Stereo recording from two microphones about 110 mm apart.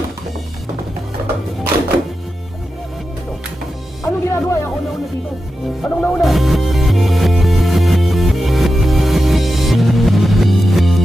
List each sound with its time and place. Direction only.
4.0 s music: 25° left (ahead or behind)
5.8 s music: 10° left (ahead or behind)
6.2 s music: centre (ahead or behind)